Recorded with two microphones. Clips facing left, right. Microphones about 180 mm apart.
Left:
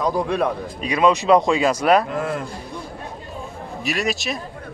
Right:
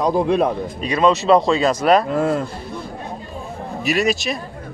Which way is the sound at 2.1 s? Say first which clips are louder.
Right 6 dB; 30° right (ahead or behind).